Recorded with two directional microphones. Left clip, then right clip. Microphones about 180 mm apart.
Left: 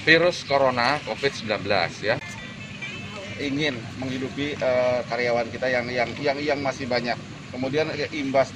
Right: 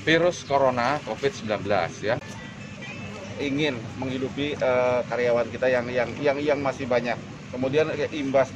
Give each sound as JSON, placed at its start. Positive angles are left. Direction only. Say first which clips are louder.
{"t": 0.0, "sound": "speech", "louder": "left 3 dB", "side_deg": 0}
{"t": 3.4, "sound": "speech", "louder": "even", "side_deg": -15}